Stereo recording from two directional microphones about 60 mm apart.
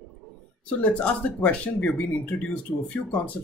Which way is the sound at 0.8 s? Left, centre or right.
Left.